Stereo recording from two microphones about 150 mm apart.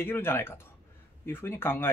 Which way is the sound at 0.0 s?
15° left (ahead or behind).